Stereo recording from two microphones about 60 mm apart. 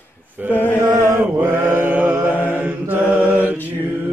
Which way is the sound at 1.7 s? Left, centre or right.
Right.